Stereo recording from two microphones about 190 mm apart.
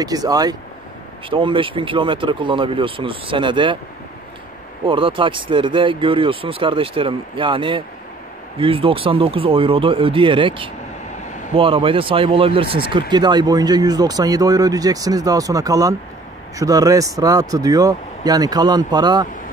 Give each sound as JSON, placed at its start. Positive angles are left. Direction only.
{"t": 0.0, "sound": "speech", "side_deg": -20}
{"t": 4.8, "sound": "speech", "side_deg": -25}